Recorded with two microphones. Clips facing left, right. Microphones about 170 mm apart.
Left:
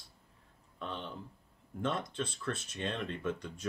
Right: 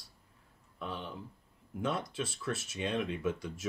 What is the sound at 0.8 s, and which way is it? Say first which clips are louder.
Speech: right 1 dB; 5° right (ahead or behind).